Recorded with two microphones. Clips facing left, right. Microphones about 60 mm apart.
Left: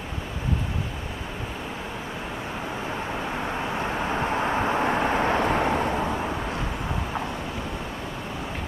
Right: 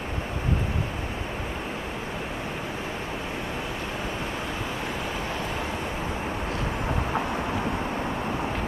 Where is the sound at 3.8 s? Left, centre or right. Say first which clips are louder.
Left 5 dB; left.